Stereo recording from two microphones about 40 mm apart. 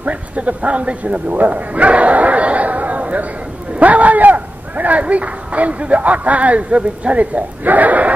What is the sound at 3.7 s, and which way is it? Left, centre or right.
A man's voice, right.